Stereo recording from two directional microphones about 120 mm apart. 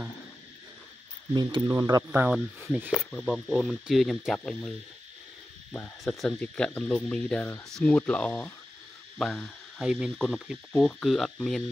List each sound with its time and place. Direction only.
1.3 s speech: 35° right (ahead or behind)
2.0 s speech: 10° right (ahead or behind)
3.1 s speech: 5° left (ahead or behind)
5.7 s speech: 20° left (ahead or behind)